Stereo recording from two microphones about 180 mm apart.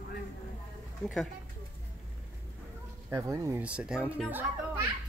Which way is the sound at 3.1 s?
15° right (ahead or behind).